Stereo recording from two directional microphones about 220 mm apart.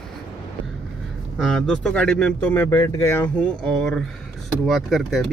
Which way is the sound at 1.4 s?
Centre (ahead or behind).